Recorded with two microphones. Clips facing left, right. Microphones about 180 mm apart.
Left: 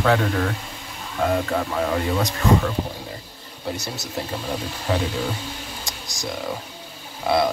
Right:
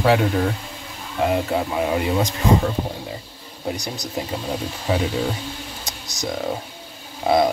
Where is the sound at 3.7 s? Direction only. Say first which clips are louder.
Right 1 dB; 15° right (ahead or behind).